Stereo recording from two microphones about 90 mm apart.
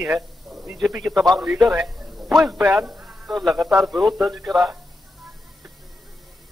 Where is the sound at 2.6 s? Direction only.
20° right (ahead or behind).